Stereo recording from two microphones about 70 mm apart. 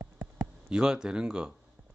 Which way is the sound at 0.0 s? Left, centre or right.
Right.